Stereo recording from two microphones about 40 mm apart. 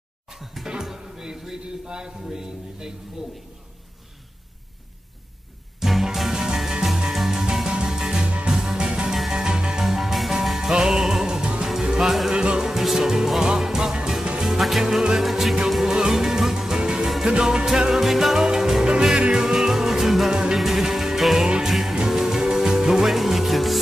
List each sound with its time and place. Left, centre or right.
0.3 s music: centre
2.2 s a man's voice: centre
5.8 s music: centre
6.3 s music: centre
9.8 s music: centre
12.6 s music: centre
18.9 s music: right; by 23.8 s centre